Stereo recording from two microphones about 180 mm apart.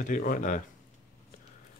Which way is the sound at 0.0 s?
50° left (ahead or behind).